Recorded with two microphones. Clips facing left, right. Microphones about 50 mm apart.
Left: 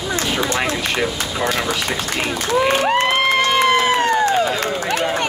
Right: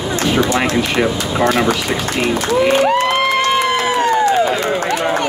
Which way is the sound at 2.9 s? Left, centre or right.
Left.